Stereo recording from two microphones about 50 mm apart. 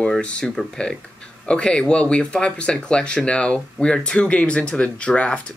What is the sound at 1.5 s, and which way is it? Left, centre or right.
Speech, centre.